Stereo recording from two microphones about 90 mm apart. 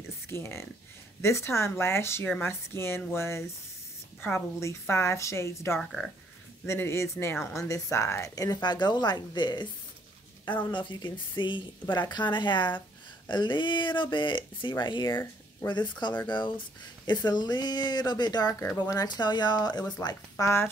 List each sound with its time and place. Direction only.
0.3 s a woman's voice: 30° left (ahead or behind)
5.8 s speech: 5° left (ahead or behind)
6.6 s a woman's voice: 30° left (ahead or behind)
8.5 s speech: 55° left (ahead or behind)
10.7 s speech: 60° left (ahead or behind)
20.4 s speech: 25° left (ahead or behind)